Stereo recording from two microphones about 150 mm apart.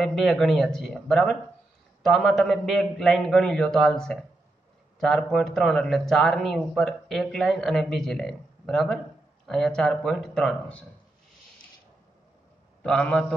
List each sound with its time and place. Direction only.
0.0 s speech: centre (ahead or behind)
12.8 s a man's voice: 5° left (ahead or behind)